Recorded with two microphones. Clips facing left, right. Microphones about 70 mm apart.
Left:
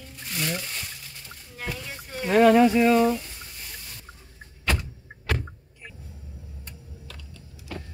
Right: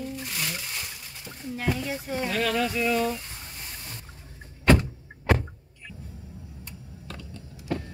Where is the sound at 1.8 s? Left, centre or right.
Centre.